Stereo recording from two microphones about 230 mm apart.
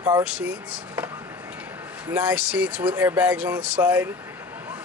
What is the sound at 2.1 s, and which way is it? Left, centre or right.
Speech, centre.